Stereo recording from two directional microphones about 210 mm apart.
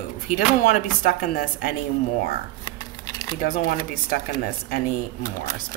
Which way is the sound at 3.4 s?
45° left (ahead or behind).